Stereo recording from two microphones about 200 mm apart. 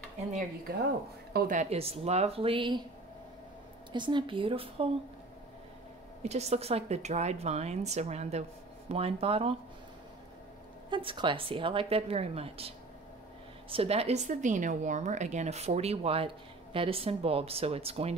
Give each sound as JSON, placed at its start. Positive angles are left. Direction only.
{"t": 1.3, "sound": "a woman's voice", "side_deg": -45}
{"t": 3.9, "sound": "a woman's voice", "side_deg": -25}
{"t": 6.2, "sound": "a woman's voice", "side_deg": -35}
{"t": 10.9, "sound": "a woman's voice", "side_deg": -25}